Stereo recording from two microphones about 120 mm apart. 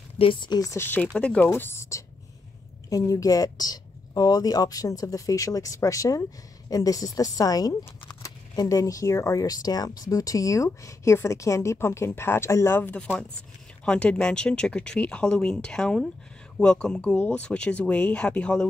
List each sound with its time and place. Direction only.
0.2 s speech: 45° left (ahead or behind)
0.6 s speech: 30° left (ahead or behind)
1.0 s speech: 10° left (ahead or behind)
1.5 s speech: 20° left (ahead or behind)